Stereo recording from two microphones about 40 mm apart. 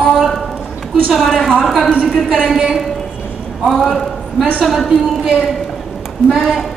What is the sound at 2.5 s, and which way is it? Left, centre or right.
Speech, centre.